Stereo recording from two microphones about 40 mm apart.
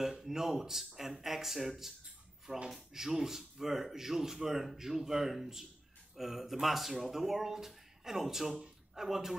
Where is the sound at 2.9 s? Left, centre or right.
Centre.